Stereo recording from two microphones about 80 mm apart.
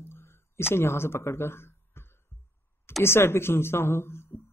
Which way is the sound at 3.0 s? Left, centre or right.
Left.